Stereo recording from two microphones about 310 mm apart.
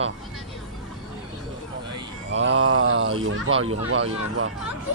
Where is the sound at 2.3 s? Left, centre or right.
Right.